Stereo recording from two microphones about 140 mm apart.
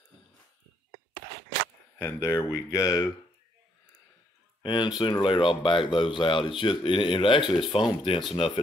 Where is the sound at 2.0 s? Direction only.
20° left (ahead or behind).